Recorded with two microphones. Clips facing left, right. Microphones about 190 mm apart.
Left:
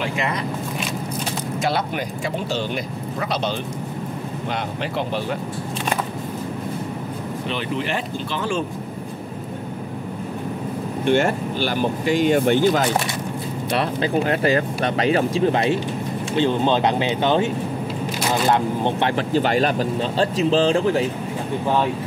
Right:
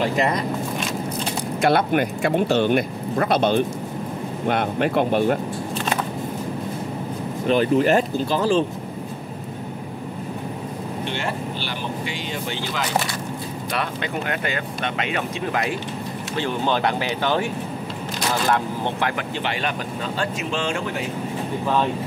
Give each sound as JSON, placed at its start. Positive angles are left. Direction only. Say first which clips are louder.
{"t": 0.0, "sound": "speech", "louder": "right 4 dB", "side_deg": -40}
{"t": 1.6, "sound": "speech", "louder": "right 6 dB", "side_deg": -55}
{"t": 7.4, "sound": "speech", "louder": "right 10 dB", "side_deg": -45}
{"t": 11.1, "sound": "speech", "louder": "left 11 dB", "side_deg": 50}
{"t": 13.7, "sound": "speech", "louder": "left 6 dB", "side_deg": 30}
{"t": 19.3, "sound": "speech", "louder": "left 8 dB", "side_deg": 40}